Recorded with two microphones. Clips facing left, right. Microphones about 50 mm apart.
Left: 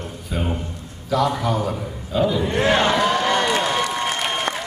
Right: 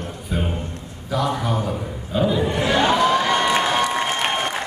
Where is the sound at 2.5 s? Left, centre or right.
Left.